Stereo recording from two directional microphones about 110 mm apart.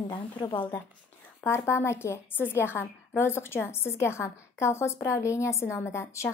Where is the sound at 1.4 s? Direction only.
25° left (ahead or behind).